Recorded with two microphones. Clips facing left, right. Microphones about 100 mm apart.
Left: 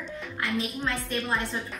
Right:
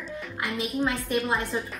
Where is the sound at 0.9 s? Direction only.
15° right (ahead or behind).